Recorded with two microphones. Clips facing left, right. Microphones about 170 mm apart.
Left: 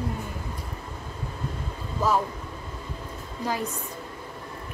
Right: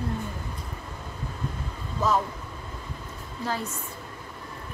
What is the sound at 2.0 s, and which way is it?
Vehicle, 10° left (ahead or behind).